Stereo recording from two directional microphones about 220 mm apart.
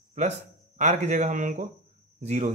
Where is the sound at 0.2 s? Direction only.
35° right (ahead or behind).